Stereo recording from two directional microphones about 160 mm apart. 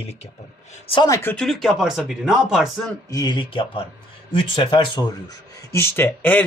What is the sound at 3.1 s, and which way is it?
Speech, 25° left (ahead or behind).